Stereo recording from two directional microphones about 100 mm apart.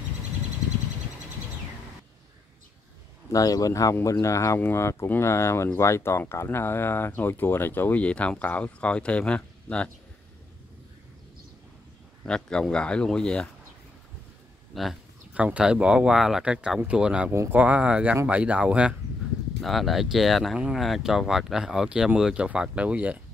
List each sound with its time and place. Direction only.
3.3 s speech: 35° left (ahead or behind); by 9.8 s 10° left (ahead or behind)
12.3 s speech: 10° left (ahead or behind)
14.7 s speech: centre (ahead or behind)
15.3 s speech: 10° right (ahead or behind)
17.3 s speech: 20° right (ahead or behind)
19.6 s speech: centre (ahead or behind)